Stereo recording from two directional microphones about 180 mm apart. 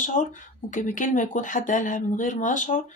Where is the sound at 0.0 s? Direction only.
45° left (ahead or behind).